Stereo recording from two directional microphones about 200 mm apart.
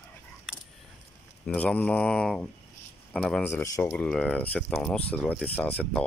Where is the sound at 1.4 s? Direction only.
5° left (ahead or behind).